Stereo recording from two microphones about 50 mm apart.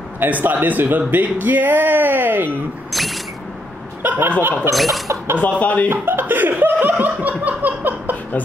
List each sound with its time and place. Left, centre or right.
0.3 s speech: right
2.9 s a sound: centre
4.0 s speech: right
4.7 s a sound: centre
5.4 s speech: left
5.9 s speech: right